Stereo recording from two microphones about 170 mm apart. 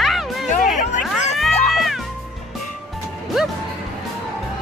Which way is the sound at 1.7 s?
Centre (ahead or behind).